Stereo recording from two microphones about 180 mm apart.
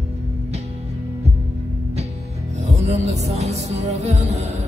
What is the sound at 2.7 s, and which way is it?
Music, 40° right (ahead or behind).